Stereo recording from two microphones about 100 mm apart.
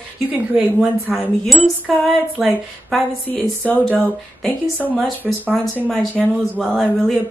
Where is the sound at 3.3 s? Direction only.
15° left (ahead or behind).